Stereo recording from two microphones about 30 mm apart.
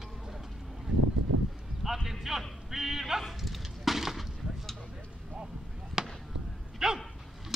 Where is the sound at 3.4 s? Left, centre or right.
Centre.